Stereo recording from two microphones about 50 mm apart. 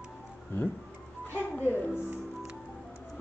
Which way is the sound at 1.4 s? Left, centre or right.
Left.